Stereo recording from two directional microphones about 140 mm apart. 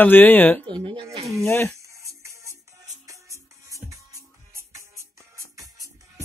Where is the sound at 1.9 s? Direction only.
20° right (ahead or behind).